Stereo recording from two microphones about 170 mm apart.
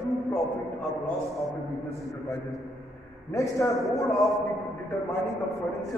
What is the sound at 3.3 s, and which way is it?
A man's voice, 20° left (ahead or behind).